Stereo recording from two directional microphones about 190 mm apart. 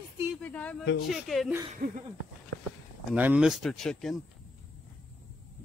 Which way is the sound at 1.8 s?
55° right (ahead or behind).